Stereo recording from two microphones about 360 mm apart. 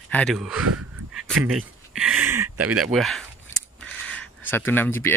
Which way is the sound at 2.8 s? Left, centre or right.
Centre.